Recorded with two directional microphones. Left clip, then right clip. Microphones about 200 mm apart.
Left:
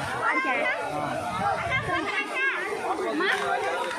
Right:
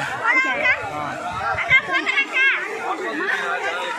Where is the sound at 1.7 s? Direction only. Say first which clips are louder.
Right 9 dB; 30° left (ahead or behind).